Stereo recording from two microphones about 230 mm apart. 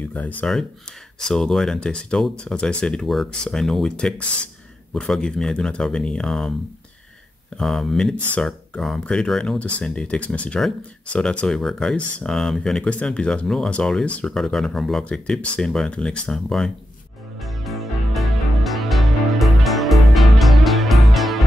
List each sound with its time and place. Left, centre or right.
0.1 s speech: centre
7.5 s speech: centre
17.4 s music: centre